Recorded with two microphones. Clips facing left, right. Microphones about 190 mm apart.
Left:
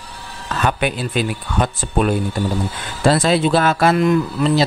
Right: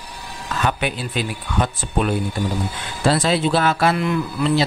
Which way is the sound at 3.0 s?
50° left (ahead or behind).